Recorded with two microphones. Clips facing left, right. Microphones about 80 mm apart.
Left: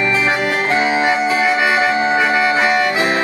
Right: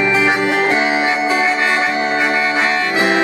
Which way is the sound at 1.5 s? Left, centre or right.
Centre.